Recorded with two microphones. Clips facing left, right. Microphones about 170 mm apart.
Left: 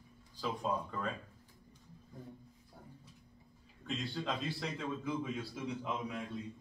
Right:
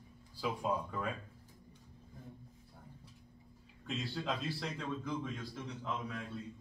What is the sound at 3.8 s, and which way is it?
A man's voice, centre (ahead or behind).